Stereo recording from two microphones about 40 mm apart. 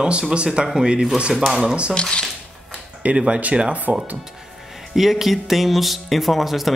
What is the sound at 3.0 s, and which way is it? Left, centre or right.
Speech, right.